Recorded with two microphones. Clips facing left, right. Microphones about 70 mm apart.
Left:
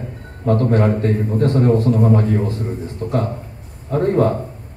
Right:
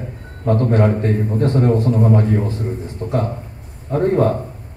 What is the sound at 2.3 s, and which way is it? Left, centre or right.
A man's voice, centre.